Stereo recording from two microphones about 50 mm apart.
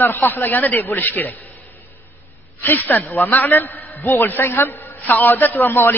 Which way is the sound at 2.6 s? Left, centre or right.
Left.